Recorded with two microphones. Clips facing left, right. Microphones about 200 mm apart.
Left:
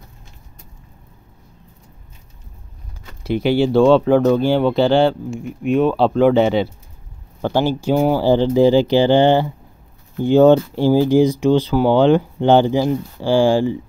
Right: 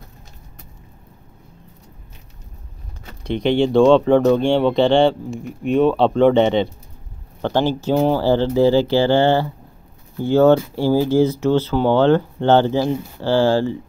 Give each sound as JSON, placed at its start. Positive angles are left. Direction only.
{"t": 3.3, "sound": "speech", "side_deg": 5}